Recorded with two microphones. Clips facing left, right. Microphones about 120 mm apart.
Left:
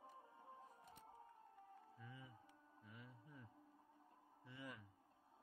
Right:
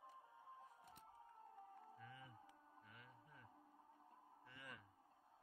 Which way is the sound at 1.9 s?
15° left (ahead or behind).